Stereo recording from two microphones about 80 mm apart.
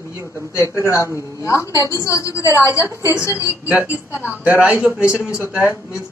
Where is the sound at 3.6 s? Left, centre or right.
Right.